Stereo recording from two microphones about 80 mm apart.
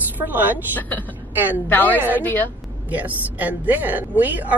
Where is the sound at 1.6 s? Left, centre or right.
Left.